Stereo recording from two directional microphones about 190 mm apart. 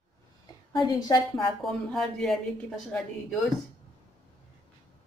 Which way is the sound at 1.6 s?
Centre (ahead or behind).